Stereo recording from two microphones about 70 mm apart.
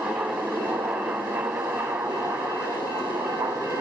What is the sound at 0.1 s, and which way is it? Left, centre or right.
Vehicle, centre.